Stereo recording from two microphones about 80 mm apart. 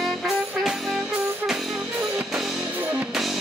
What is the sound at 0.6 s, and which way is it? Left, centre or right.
Music, centre.